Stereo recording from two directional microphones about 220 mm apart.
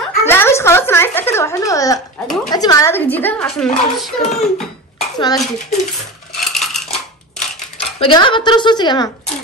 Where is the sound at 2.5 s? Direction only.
15° left (ahead or behind).